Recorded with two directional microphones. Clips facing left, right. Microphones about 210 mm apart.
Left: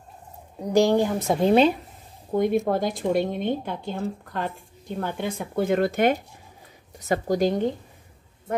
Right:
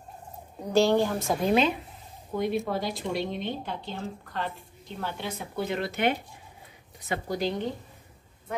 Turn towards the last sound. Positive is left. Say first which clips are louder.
# left 7 dB
turn(degrees=45)  # may be behind; listen again after turning